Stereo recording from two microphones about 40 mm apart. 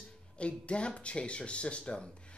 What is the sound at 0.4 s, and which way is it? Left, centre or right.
A woman's voice, left.